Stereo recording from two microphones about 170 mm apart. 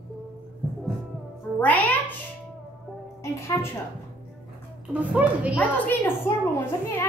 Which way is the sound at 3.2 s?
15° left (ahead or behind).